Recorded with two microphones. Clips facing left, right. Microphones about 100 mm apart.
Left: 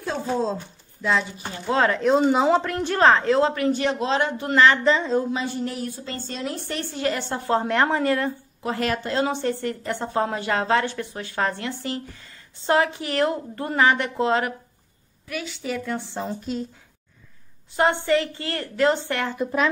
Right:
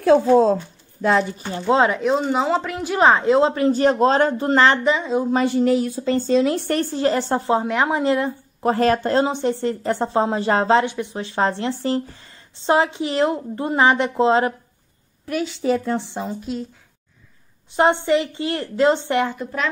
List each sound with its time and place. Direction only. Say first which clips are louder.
0.0 s speech: right 11 dB; 90° right
1.5 s a woman's voice: right 4 dB; 20° right (ahead or behind)
2.0 s a woman's voice: left 1 dB; centre (ahead or behind); by 4.7 s 35° right (ahead or behind)
4.8 s a woman's voice: right 1 dB; 10° right (ahead or behind)
5.4 s speech: right 10 dB; 90° right
6.7 s a woman's voice: right 7 dB; 35° right (ahead or behind)
7.6 s a woman's voice: right 1 dB; 5° right (ahead or behind)
8.0 s a woman's voice: right 3 dB; 20° right (ahead or behind)
8.6 s a woman's voice: right 8 dB; 35° right (ahead or behind)
9.2 s a woman's voice: right 3 dB; 20° right (ahead or behind)
15.2 s a woman's voice: right 9 dB; 35° right (ahead or behind); by 16.3 s 20° right (ahead or behind)
16.3 s speech: right 1 dB; centre (ahead or behind)
17.7 s a woman's voice: right 3 dB; 25° right (ahead or behind)
19.3 s a woman's voice: left 2 dB; 5° left (ahead or behind)